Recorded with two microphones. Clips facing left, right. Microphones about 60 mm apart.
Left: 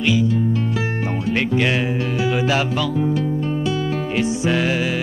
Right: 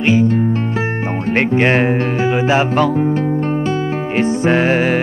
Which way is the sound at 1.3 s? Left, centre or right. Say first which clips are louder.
Right 6 dB; right.